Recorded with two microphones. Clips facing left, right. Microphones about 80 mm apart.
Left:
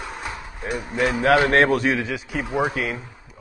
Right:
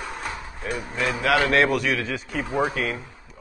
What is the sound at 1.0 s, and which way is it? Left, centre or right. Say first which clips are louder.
A man's voice: left 4 dB; left.